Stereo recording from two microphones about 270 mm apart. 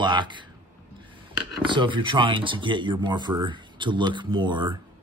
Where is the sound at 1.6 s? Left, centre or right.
Centre.